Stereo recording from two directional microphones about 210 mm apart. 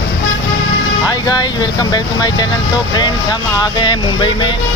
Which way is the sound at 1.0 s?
20° left (ahead or behind).